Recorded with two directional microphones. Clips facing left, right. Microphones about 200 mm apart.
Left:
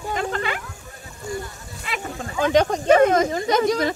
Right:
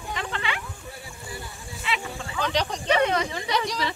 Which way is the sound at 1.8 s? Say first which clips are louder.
Left 1 dB; 45° left (ahead or behind).